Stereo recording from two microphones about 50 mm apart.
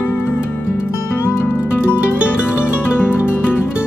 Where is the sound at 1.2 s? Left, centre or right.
Left.